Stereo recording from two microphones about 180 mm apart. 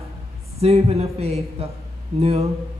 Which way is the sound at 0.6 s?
35° right (ahead or behind).